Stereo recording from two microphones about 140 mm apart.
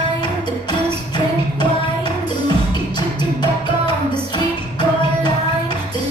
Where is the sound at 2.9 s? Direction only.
30° left (ahead or behind).